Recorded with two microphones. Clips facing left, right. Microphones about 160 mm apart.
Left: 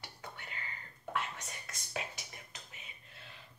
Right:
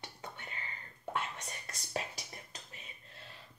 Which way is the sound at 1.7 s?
35° right (ahead or behind).